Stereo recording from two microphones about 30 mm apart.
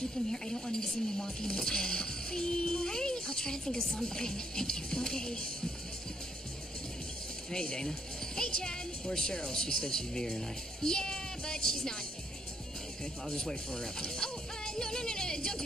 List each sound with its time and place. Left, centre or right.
0.0 s speech: left
7.5 s speech: left
13.0 s speech: left